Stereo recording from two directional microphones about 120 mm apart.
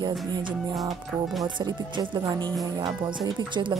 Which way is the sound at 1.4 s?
35° right (ahead or behind).